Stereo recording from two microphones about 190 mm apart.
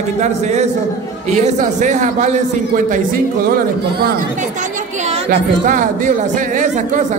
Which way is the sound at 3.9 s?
55° right (ahead or behind).